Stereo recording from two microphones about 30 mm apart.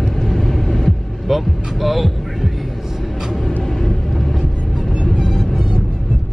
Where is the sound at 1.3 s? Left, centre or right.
Centre.